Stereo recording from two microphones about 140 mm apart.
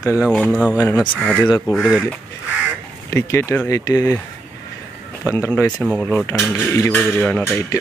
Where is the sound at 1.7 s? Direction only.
5° right (ahead or behind).